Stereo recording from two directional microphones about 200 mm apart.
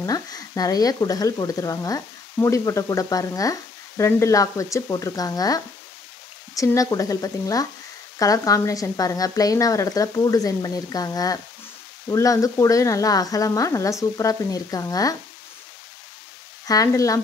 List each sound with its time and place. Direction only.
0.0 s speech: 20° left (ahead or behind)
16.6 s speech: 15° left (ahead or behind)